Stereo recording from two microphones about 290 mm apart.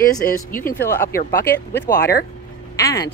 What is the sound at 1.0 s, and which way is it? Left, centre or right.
Speech, left.